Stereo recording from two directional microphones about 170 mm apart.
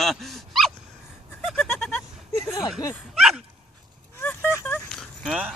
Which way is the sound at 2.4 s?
15° left (ahead or behind).